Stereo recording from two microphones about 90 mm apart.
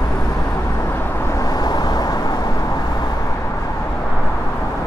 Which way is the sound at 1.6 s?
50° left (ahead or behind).